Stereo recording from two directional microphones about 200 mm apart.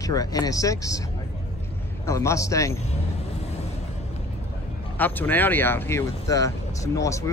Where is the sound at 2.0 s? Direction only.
15° left (ahead or behind).